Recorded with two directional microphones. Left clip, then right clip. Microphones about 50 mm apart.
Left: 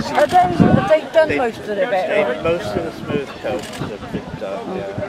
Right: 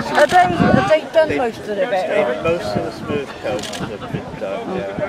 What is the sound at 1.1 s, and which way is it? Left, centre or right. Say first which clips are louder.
Speech: even; centre.